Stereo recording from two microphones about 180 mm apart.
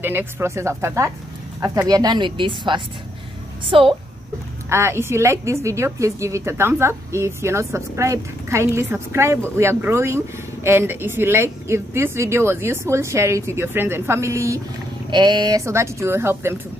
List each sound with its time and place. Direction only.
0.0 s a woman's voice: 10° right (ahead or behind); by 3.9 s 30° right (ahead or behind)
4.6 s a woman's voice: 15° right (ahead or behind)